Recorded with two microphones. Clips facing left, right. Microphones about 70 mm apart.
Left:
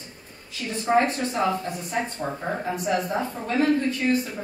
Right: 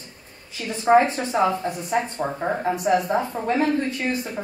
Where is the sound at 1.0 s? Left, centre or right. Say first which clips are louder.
Right 3 dB; right.